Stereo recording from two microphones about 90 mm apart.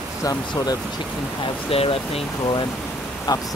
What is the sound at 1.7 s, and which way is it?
Speech, 90° left.